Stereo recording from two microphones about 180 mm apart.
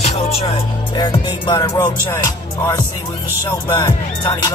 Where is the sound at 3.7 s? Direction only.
25° left (ahead or behind).